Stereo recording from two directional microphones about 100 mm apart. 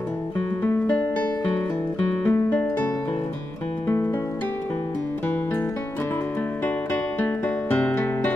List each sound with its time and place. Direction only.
0.7 s music: 15° left (ahead or behind)
6.9 s music: 20° left (ahead or behind)